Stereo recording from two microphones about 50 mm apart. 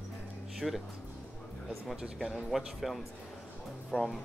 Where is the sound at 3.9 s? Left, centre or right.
Left.